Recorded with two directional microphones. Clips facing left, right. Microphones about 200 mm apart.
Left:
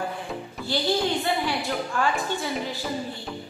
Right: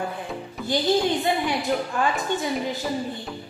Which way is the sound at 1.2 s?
20° right (ahead or behind).